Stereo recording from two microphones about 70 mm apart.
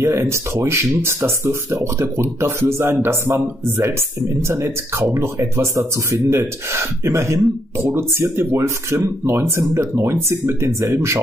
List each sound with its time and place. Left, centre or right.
0.0 s speech: right